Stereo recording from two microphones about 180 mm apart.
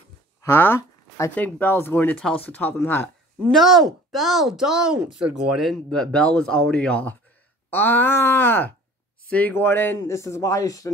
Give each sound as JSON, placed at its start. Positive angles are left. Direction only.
{"t": 0.4, "sound": "speech", "side_deg": 15}
{"t": 3.5, "sound": "speech", "side_deg": 0}